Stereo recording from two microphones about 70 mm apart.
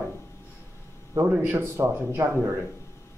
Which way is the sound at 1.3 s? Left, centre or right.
Right.